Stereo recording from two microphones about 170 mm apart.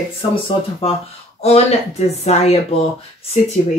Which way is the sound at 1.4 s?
40° left (ahead or behind).